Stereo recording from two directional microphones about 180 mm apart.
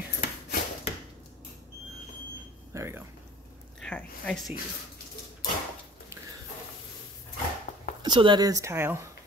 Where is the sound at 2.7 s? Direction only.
15° right (ahead or behind).